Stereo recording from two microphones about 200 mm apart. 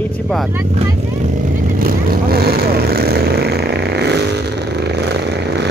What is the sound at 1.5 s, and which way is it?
Vehicle, 45° right (ahead or behind).